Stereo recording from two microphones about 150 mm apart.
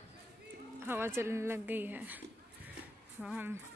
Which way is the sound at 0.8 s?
15° right (ahead or behind).